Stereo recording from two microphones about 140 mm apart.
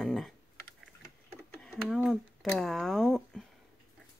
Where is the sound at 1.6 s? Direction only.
Centre (ahead or behind).